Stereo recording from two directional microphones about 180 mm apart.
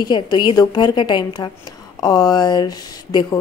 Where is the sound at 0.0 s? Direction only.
25° left (ahead or behind).